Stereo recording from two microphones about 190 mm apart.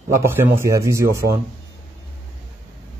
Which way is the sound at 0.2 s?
15° right (ahead or behind).